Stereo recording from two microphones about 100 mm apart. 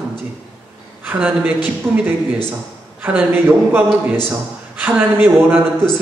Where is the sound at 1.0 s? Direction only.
15° right (ahead or behind).